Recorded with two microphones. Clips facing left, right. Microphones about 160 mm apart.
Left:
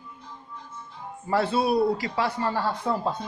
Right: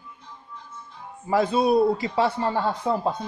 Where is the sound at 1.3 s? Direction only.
15° right (ahead or behind).